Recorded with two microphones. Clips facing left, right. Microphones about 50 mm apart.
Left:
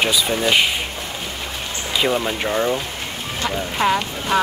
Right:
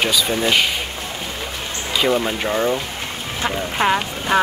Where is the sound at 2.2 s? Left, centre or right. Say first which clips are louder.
Right 1 dB; centre.